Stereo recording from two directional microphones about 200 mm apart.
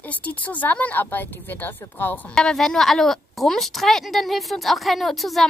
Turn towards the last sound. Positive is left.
turn(degrees=0)  # may be behind; listen again after turning